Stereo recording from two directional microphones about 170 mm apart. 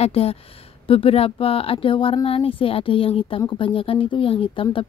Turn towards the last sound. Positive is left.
turn(degrees=30)  # may be behind; listen again after turning